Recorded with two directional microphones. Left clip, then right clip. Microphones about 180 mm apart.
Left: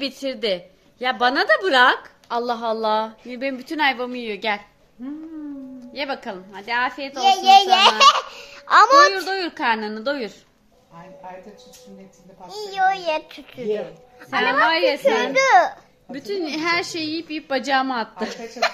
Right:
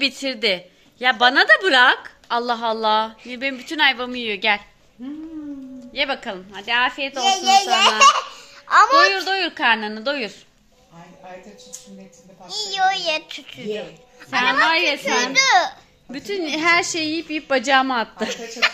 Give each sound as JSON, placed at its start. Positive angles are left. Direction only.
{"t": 0.0, "sound": "a woman's voice", "side_deg": -5}
{"t": 4.1, "sound": "a woman's voice", "side_deg": 0}
{"t": 5.9, "sound": "a woman's voice", "side_deg": -10}
{"t": 7.2, "sound": "a child's voice", "side_deg": 85}
{"t": 7.4, "sound": "a child's voice", "side_deg": 40}
{"t": 8.0, "sound": "laughter", "side_deg": 35}
{"t": 9.0, "sound": "a woman's voice", "side_deg": 0}
{"t": 12.4, "sound": "a child's voice", "side_deg": 55}
{"t": 14.7, "sound": "a woman's voice", "side_deg": -5}
{"t": 15.1, "sound": "a child's voice", "side_deg": 55}
{"t": 16.1, "sound": "a woman's voice", "side_deg": -25}
{"t": 18.3, "sound": "speech", "side_deg": 30}